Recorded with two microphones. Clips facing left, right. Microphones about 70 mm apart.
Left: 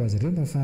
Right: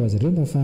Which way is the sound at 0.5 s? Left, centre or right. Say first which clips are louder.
Right 5 dB; centre.